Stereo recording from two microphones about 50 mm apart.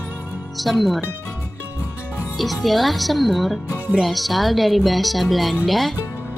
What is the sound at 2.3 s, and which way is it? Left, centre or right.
A woman's voice, centre.